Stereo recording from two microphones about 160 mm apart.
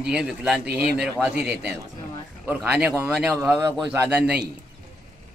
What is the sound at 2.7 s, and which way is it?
A man's voice, 10° right (ahead or behind).